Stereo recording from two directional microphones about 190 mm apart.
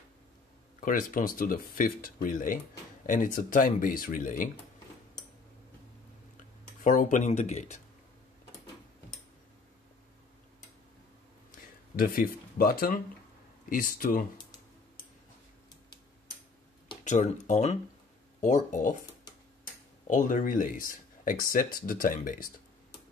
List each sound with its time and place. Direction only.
0.7 s speech: 45° left (ahead or behind)
6.8 s speech: 45° left (ahead or behind)
12.0 s speech: 50° left (ahead or behind)
17.0 s speech: 40° left (ahead or behind)